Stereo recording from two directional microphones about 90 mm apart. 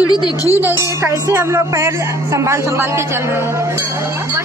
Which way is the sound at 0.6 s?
25° right (ahead or behind).